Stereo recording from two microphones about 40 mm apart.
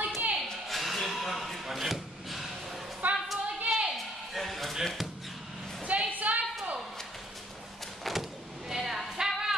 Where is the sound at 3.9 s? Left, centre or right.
Centre.